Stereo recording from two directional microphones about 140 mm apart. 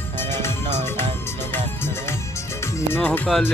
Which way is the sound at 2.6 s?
15° left (ahead or behind).